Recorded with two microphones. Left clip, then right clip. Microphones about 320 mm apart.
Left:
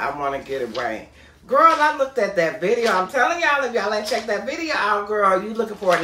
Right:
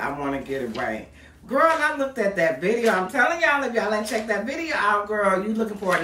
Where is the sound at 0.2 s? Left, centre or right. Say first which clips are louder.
Left 3 dB; centre.